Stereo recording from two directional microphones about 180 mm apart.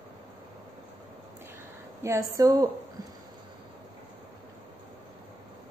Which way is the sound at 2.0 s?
15° right (ahead or behind).